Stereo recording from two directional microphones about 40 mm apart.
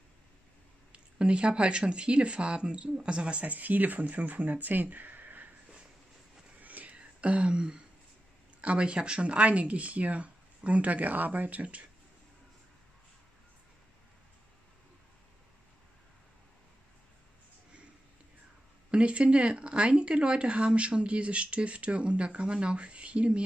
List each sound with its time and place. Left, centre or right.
0.9 s speech: right
3.5 s speech: right
6.6 s whispering: right
7.0 s a sound: right
8.5 s speech: right
18.9 s speech: right